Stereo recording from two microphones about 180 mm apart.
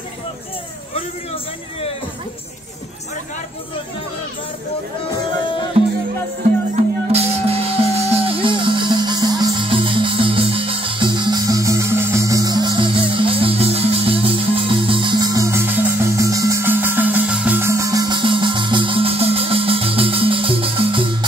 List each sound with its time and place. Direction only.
0.9 s a man's voice: 35° left (ahead or behind)
5.4 s music: 25° left (ahead or behind)
6.7 s music: 35° right (ahead or behind)